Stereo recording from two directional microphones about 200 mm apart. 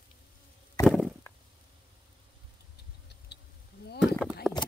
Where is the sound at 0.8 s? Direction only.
Centre (ahead or behind).